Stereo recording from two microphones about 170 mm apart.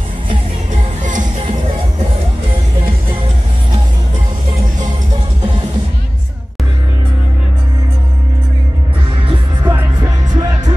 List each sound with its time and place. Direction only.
1.0 s music: 50° right (ahead or behind)
9.7 s music: 15° right (ahead or behind)